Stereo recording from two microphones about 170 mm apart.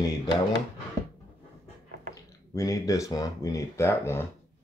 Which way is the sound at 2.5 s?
20° left (ahead or behind).